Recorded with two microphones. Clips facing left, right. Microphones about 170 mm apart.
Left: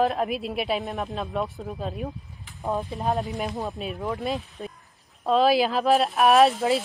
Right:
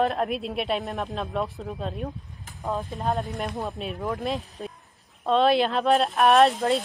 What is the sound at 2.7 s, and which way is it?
Speech, 20° left (ahead or behind).